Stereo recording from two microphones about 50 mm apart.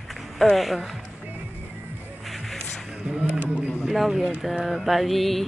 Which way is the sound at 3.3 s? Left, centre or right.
Right.